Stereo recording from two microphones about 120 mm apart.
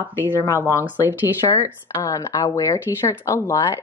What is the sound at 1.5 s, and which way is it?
Speech, 25° left (ahead or behind).